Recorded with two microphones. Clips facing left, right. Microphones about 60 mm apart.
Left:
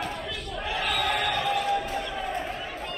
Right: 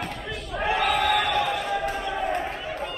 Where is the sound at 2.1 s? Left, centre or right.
Right.